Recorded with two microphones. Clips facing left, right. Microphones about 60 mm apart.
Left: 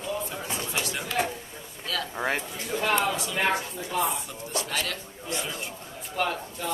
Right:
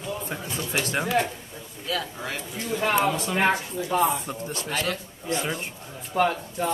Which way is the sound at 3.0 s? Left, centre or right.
Right.